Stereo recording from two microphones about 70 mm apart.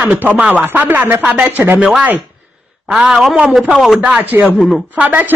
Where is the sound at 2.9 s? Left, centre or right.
Centre.